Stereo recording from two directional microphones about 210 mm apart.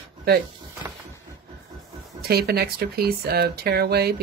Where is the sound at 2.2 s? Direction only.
50° right (ahead or behind).